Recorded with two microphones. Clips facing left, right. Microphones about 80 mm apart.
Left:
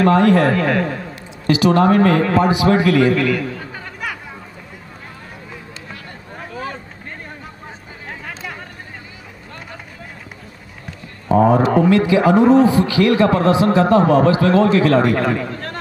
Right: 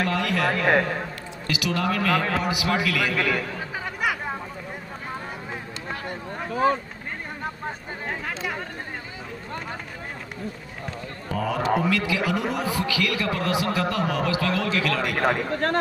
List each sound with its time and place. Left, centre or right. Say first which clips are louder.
0.0 s a man's voice: left 11 dB; left
11.2 s a man's voice: left 11 dB; left
15.2 s speech: left 1 dB; right